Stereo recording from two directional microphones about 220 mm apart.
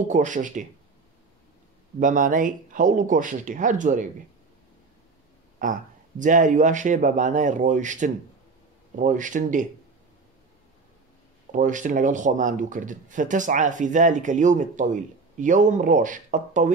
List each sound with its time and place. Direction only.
0.1 s speech: 35° right (ahead or behind)
2.0 s speech: 35° right (ahead or behind)
5.6 s speech: 35° right (ahead or behind)
11.5 s speech: 35° right (ahead or behind)